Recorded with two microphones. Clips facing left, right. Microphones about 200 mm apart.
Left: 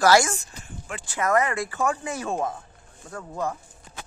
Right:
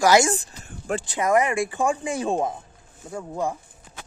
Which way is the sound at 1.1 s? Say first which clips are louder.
Right 1 dB; 15° right (ahead or behind).